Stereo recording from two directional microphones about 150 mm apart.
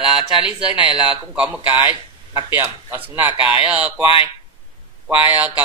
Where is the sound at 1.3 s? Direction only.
10° right (ahead or behind).